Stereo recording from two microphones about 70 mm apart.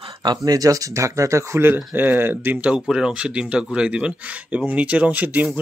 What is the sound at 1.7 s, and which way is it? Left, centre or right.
Speech, right.